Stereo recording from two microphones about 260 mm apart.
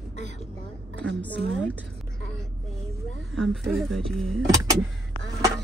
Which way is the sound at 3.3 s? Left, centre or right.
Centre.